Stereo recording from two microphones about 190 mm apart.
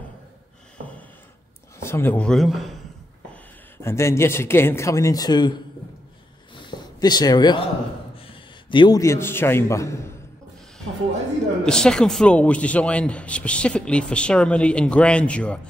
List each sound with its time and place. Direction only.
1.8 s a man's voice: 15° left (ahead or behind)
3.7 s speech: 15° left (ahead or behind)
6.5 s a sound: 25° left (ahead or behind)
8.6 s speech: 25° left (ahead or behind)
11.6 s a man's voice: 5° left (ahead or behind)